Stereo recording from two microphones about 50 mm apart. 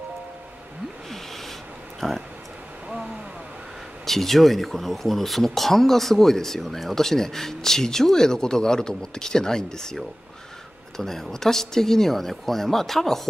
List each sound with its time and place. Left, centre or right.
2.0 s speech: centre
4.0 s speech: centre